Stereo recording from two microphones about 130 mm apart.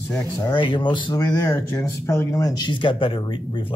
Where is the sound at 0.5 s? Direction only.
40° left (ahead or behind).